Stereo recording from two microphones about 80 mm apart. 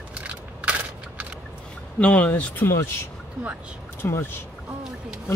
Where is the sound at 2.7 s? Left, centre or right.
Left.